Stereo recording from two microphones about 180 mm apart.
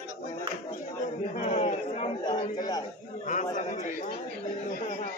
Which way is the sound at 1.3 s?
35° left (ahead or behind).